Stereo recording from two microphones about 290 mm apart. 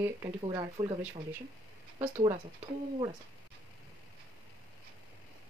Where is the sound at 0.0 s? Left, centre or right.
Centre.